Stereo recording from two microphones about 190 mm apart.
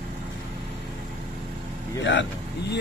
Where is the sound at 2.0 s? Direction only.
70° left (ahead or behind).